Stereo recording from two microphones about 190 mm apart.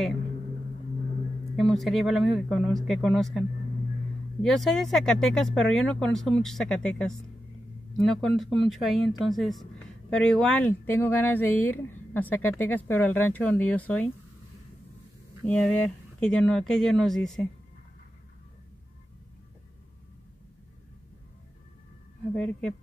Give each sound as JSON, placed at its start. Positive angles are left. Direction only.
{"t": 1.6, "sound": "a woman's voice", "side_deg": 0}
{"t": 15.4, "sound": "speech", "side_deg": 5}
{"t": 22.3, "sound": "speech", "side_deg": 5}